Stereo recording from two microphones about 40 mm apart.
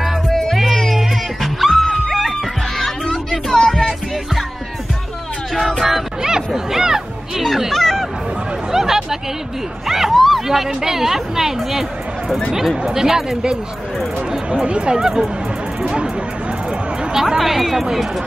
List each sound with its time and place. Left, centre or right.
0.3 s music: centre
5.8 s music: centre
6.2 s chatter: centre
7.7 s hubbub: centre
8.7 s a sound: centre
9.8 s speech: centre
15.0 s speech: centre
17.4 s speech: centre